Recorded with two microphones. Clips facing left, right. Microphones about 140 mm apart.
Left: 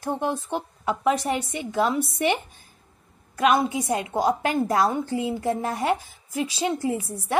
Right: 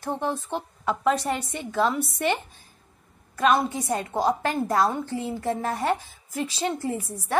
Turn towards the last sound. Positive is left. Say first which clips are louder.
# left 3 dB
turn(degrees=10)  # may be behind; listen again after turning